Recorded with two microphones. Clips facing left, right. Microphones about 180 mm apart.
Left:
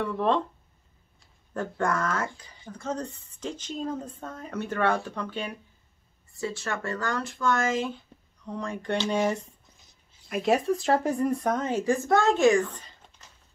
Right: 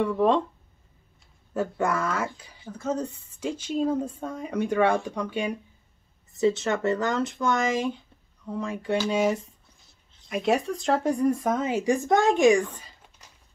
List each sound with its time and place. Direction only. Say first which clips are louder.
0.0 s speech: right 4 dB; 10° right (ahead or behind)
1.5 s speech: right 2 dB; 5° right (ahead or behind)
8.5 s speech: right 2 dB; 5° right (ahead or behind)